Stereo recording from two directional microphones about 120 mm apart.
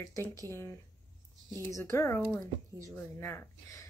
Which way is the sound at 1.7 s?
25° left (ahead or behind).